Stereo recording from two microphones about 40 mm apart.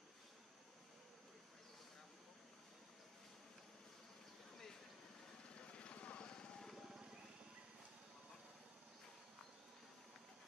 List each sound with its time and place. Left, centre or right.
5.6 s vehicle: left